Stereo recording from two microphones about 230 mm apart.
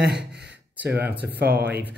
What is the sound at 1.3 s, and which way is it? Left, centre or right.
Speech, right.